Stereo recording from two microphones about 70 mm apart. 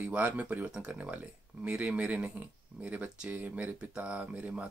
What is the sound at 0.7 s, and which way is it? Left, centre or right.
Speech, centre.